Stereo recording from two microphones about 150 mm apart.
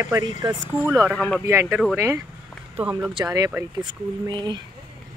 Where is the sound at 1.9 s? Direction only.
20° right (ahead or behind).